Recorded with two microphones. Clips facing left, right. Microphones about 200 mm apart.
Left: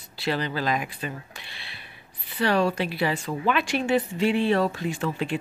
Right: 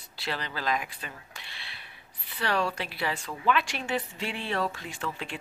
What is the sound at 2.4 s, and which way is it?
Speech, 10° left (ahead or behind).